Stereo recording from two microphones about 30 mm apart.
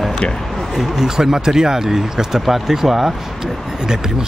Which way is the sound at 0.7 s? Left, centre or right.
Centre.